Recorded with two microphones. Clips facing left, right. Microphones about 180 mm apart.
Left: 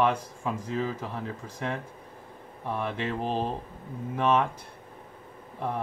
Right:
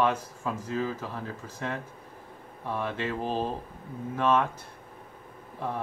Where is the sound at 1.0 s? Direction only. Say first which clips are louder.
Left 1 dB; 10° left (ahead or behind).